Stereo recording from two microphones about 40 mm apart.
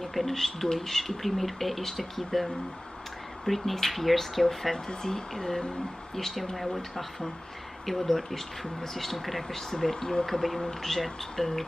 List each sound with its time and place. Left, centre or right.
0.0 s speech: centre
4.7 s speech: centre